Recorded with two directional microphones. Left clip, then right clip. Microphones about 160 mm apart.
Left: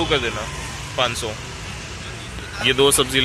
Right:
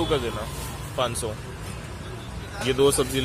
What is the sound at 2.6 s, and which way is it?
Speech, centre (ahead or behind).